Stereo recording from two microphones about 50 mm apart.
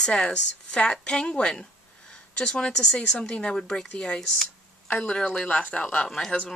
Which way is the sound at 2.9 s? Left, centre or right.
Left.